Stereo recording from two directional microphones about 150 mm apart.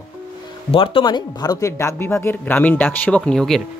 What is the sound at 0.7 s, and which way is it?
Speech, 35° left (ahead or behind).